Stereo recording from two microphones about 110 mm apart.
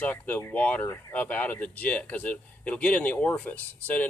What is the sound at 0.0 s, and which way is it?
Speech, 15° left (ahead or behind).